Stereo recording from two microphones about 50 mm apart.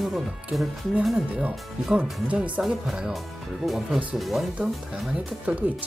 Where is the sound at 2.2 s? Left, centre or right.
Right.